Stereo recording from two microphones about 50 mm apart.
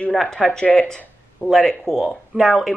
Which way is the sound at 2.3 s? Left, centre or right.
Centre.